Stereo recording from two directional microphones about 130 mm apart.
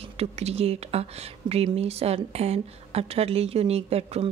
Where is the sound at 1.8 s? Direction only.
50° right (ahead or behind).